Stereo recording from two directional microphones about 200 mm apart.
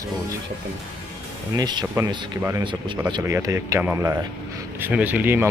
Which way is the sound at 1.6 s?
20° right (ahead or behind).